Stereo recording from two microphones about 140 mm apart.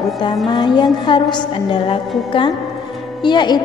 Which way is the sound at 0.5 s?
35° left (ahead or behind).